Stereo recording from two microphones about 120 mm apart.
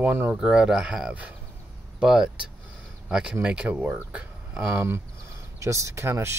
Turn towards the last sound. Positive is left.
turn(degrees=-20)  # may be behind; listen again after turning